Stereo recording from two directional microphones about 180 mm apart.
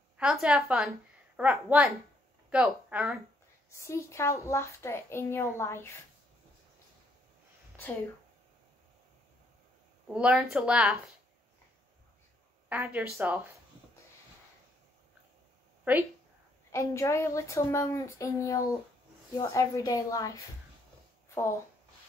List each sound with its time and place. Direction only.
0.2 s a woman's voice: 5° right (ahead or behind)
3.8 s a woman's voice: 15° left (ahead or behind)
10.0 s speech: 5° right (ahead or behind)
12.6 s a woman's voice: 10° right (ahead or behind)
16.7 s a woman's voice: 15° left (ahead or behind)